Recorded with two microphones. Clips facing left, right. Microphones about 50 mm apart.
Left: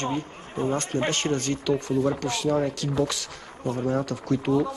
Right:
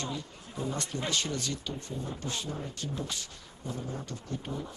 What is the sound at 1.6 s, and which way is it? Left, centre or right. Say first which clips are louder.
Speech: left 15 dB; left.